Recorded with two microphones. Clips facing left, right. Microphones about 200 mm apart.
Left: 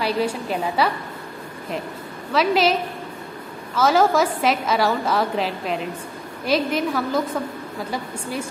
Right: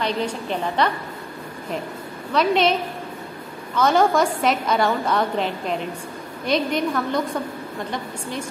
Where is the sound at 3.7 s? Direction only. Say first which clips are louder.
Even; 5° left (ahead or behind).